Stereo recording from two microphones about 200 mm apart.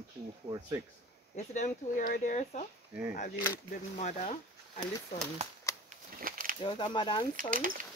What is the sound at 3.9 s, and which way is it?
Speech, 35° left (ahead or behind).